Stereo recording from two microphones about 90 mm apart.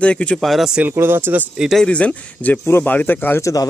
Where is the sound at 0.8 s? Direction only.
20° right (ahead or behind).